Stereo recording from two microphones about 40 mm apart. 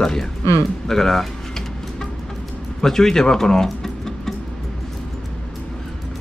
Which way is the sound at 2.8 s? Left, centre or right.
Centre.